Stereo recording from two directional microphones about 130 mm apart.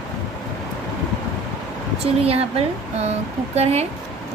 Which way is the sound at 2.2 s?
50° right (ahead or behind).